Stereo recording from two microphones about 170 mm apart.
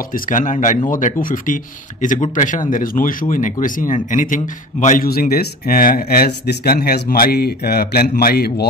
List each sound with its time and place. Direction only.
0.1 s a man's voice: 50° left (ahead or behind); by 8.6 s 70° left (ahead or behind)